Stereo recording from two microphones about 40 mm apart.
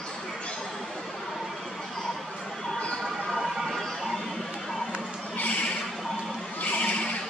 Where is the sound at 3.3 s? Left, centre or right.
Centre.